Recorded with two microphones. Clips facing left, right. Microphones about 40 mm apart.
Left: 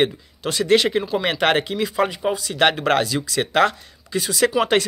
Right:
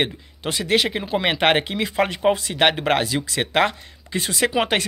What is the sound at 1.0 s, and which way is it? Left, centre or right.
Speech, right.